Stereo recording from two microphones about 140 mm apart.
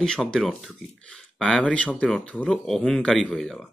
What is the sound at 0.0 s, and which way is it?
Speech, 5° left (ahead or behind).